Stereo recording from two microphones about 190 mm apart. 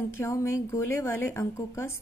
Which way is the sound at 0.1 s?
15° left (ahead or behind).